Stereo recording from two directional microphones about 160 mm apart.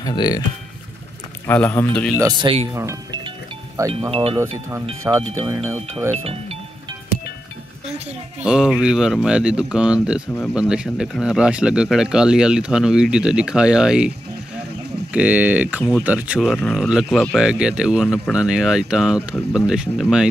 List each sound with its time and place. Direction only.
0.0 s speech: 25° left (ahead or behind)
1.5 s a man's voice: 15° left (ahead or behind)
2.4 s speech: 40° right (ahead or behind)
2.7 s speech: 20° right (ahead or behind)
4.1 s speech: 35° right (ahead or behind)
5.1 s speech: 15° right (ahead or behind)
6.1 s speech: 40° right (ahead or behind)
8.4 s speech: 5° right (ahead or behind)
15.1 s speech: 10° right (ahead or behind)